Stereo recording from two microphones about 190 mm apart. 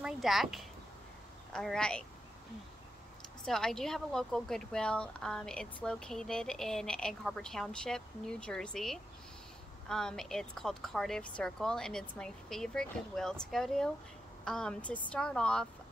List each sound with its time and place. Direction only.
0.0 s a woman's voice: centre (ahead or behind)
3.4 s a woman's voice: 5° left (ahead or behind)